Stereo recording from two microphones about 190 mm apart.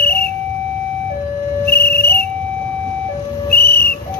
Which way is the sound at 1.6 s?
55° left (ahead or behind).